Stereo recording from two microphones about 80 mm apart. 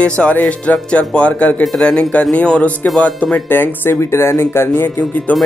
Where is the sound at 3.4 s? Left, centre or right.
Left.